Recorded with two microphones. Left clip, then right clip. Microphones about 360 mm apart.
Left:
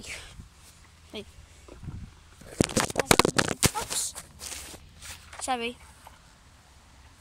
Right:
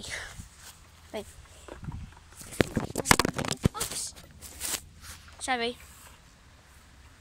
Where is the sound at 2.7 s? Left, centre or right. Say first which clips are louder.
Left 3 dB; left.